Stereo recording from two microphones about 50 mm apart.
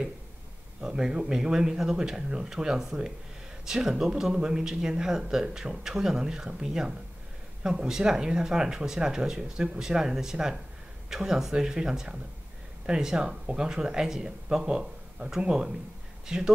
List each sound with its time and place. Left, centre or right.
0.7 s speech: centre